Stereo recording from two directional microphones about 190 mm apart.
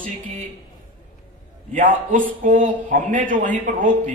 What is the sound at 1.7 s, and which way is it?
A man's voice, 45° right (ahead or behind).